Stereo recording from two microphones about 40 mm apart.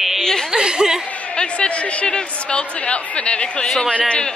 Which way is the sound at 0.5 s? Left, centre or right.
Centre.